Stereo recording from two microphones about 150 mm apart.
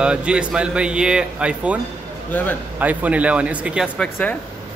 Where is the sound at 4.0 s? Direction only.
10° left (ahead or behind).